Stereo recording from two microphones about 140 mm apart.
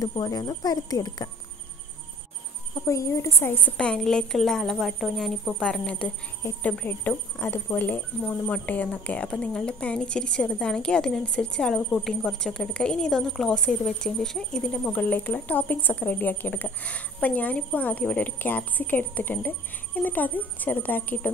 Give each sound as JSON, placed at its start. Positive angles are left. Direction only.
{"t": 0.0, "sound": "speech", "side_deg": 25}
{"t": 2.7, "sound": "speech", "side_deg": 20}
{"t": 3.7, "sound": "a woman's voice", "side_deg": 5}